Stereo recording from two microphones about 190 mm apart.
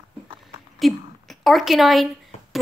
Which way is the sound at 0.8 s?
Centre (ahead or behind).